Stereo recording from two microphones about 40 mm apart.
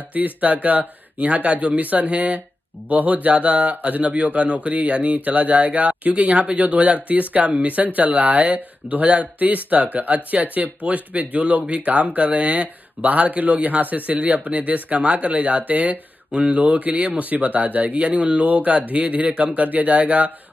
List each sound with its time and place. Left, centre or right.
0.1 s speech: right
9.0 s speech: right
17.2 s speech: right